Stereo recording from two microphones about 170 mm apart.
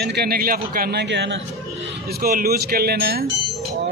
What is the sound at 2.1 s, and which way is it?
Speech, 60° right (ahead or behind).